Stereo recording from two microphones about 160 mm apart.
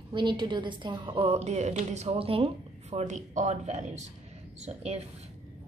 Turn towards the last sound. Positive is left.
turn(degrees=-40)  # may be behind; listen again after turning